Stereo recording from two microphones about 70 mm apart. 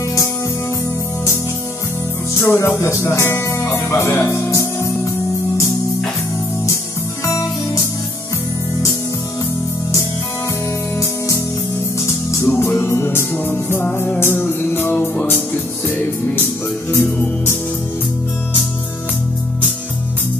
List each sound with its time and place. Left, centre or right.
2.4 s speech: left
7.2 s music: left
11.0 s music: left